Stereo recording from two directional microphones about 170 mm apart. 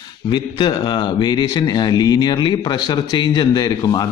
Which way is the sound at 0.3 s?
30° left (ahead or behind).